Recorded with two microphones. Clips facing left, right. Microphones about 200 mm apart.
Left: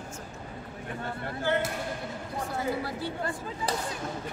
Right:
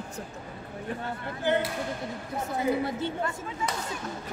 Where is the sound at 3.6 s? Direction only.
35° left (ahead or behind).